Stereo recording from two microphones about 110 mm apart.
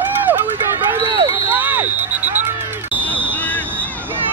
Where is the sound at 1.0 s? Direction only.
35° right (ahead or behind).